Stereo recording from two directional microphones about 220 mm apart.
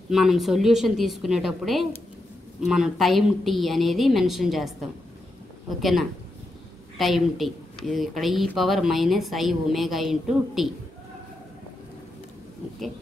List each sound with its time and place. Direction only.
0.1 s a woman's voice: centre (ahead or behind)